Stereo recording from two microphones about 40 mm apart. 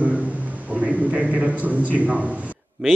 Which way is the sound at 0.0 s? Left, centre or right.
Right.